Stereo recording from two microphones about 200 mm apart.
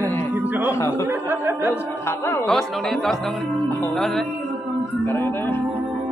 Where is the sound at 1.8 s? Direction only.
10° left (ahead or behind).